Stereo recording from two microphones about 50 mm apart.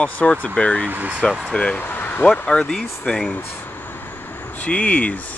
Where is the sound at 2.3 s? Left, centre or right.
Centre.